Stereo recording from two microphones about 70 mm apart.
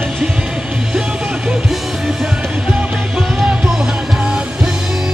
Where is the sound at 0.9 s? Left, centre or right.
Centre.